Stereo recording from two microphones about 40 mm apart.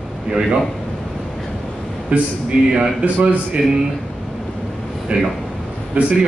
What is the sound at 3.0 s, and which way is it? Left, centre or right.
Speech, right.